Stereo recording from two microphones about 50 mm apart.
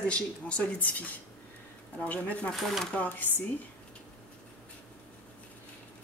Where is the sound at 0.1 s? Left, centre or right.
Left.